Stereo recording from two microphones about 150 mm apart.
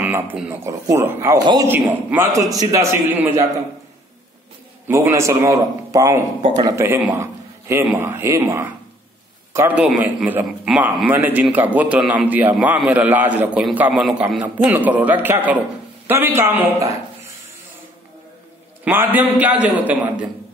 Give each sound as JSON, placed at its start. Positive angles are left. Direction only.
{"t": 0.0, "sound": "a man's voice", "side_deg": -10}
{"t": 1.9, "sound": "a man's voice", "side_deg": -10}
{"t": 4.8, "sound": "a man's voice", "side_deg": -15}
{"t": 9.8, "sound": "a man's voice", "side_deg": -5}
{"t": 18.9, "sound": "a man's voice", "side_deg": -10}